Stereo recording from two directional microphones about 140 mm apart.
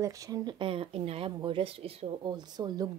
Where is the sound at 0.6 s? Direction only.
40° right (ahead or behind).